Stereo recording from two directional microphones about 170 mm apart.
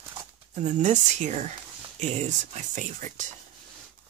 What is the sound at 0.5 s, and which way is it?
Speech, 45° right (ahead or behind).